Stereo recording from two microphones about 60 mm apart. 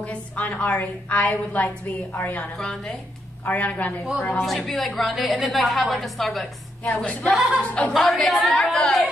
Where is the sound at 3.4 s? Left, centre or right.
Left.